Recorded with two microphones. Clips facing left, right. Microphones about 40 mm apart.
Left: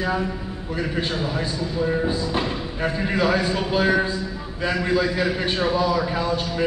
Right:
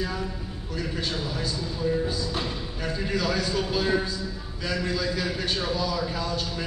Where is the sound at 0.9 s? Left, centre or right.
Left.